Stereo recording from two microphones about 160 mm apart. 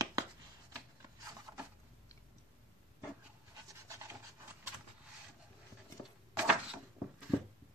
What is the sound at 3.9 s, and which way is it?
Rub, 15° right (ahead or behind).